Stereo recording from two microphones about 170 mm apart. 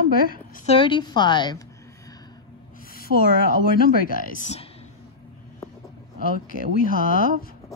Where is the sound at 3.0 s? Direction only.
60° left (ahead or behind); by 4.6 s 45° left (ahead or behind).